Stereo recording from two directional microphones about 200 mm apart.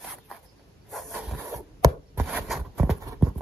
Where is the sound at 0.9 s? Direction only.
Centre (ahead or behind).